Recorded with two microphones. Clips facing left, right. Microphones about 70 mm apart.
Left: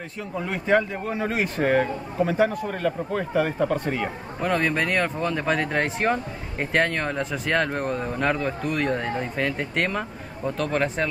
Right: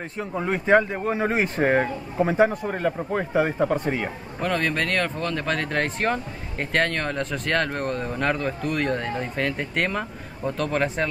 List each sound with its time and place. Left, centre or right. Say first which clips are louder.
0.2 s speech: right 3 dB; right
4.4 s speech: left 1 dB; centre